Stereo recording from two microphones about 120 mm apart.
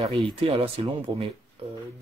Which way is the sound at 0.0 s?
55° right (ahead or behind).